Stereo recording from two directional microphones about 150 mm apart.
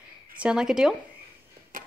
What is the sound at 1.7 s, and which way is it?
Tick-tock, 65° right (ahead or behind).